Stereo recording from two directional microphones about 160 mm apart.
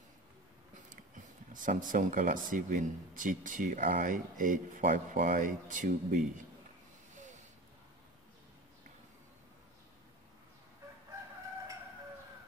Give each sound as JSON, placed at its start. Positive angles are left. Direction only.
{"t": 1.1, "sound": "speech", "side_deg": -55}